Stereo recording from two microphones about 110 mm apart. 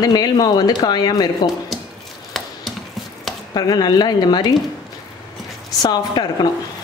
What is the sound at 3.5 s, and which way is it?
Speech, 40° left (ahead or behind).